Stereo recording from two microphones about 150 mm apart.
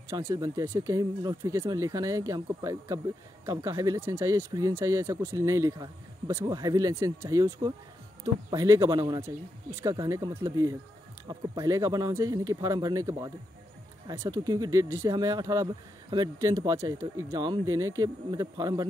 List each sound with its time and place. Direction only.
0.1 s speech: 20° right (ahead or behind)